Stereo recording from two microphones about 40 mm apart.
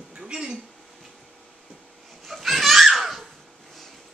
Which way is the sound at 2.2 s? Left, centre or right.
Centre.